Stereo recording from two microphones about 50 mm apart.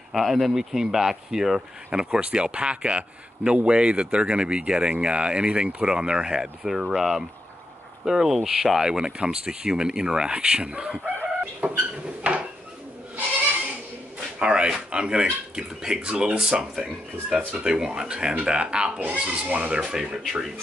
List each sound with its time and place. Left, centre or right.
0.1 s speech: centre; by 11.0 s right
11.6 s a sound: right
12.2 s dishes: right
14.4 s speech: centre